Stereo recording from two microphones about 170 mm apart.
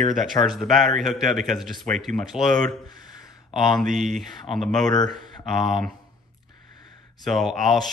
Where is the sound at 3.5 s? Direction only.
Centre (ahead or behind).